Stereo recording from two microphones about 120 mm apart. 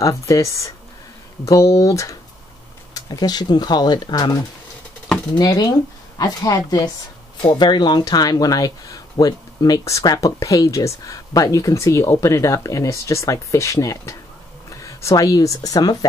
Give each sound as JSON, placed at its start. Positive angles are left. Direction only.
{"t": 0.0, "sound": "speech", "side_deg": 30}
{"t": 5.0, "sound": "a sound", "side_deg": 5}
{"t": 5.4, "sound": "speech", "side_deg": 35}